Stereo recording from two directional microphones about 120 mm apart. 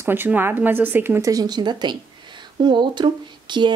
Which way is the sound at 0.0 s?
20° right (ahead or behind).